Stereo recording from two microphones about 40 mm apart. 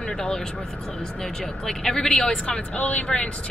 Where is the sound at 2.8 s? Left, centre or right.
Left.